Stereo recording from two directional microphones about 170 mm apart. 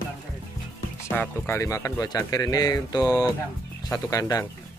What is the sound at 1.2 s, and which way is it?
Speech, 15° left (ahead or behind).